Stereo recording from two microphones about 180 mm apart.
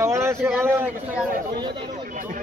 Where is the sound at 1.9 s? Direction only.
45° right (ahead or behind).